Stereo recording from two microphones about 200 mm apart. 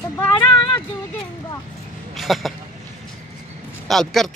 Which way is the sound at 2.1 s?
Centre (ahead or behind).